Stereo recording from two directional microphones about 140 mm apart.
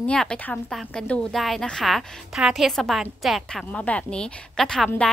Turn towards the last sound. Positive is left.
turn(degrees=5)  # may be behind; listen again after turning